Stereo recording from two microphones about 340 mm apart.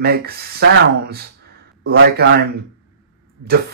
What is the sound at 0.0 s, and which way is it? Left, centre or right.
Speech, right.